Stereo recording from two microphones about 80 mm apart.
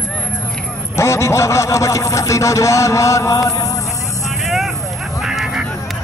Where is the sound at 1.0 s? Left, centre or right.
Left.